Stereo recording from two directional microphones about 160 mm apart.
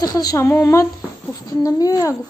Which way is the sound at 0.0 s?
25° left (ahead or behind).